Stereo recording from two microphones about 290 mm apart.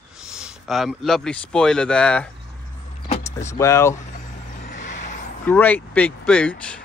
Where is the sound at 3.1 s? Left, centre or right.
Left.